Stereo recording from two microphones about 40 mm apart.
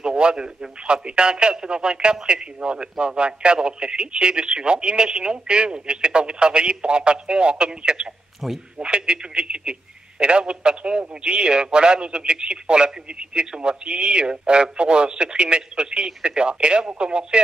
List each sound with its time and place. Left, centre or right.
0.0 s radio: right
0.8 s a man's voice: right
8.4 s speech: centre
8.8 s a man's voice: right